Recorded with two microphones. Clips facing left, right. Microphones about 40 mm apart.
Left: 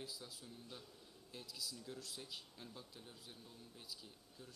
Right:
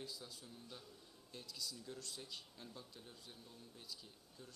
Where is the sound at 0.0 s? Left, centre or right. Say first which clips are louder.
Even; centre.